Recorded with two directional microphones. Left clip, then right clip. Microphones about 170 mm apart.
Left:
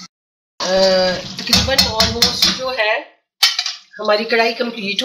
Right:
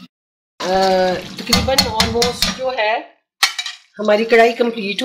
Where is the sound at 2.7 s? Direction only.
55° right (ahead or behind).